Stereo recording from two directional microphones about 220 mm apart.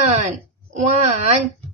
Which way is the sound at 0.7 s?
30° right (ahead or behind).